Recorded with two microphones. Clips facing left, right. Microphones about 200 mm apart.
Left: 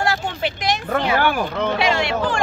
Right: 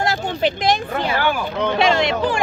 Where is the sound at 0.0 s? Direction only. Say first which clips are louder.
Right 2 dB; 20° right (ahead or behind).